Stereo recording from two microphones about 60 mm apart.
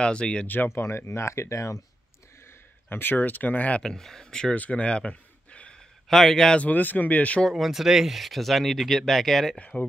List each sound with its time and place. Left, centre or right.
0.0 s speech: centre
0.7 s speech: left
2.9 s speech: left
3.8 s speech: centre
4.6 s a sound: left
6.0 s speech: centre
6.6 s speech: left
7.4 s speech: centre
9.6 s speech: left